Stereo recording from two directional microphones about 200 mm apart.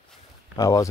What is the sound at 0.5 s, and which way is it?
Speech, 15° left (ahead or behind).